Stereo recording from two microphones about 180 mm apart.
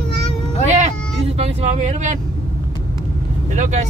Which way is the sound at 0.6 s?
40° right (ahead or behind).